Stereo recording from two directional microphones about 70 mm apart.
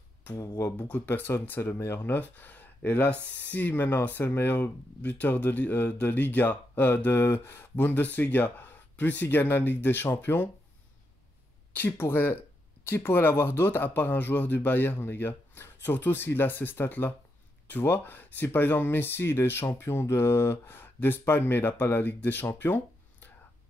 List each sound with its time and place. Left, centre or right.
0.6 s speech: left
0.8 s speech: left
11.7 s speech: left